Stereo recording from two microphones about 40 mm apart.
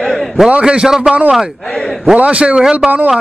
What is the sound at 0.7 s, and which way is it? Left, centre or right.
Speech, centre.